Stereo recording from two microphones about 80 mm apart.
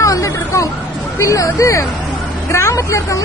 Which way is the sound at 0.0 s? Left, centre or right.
Left.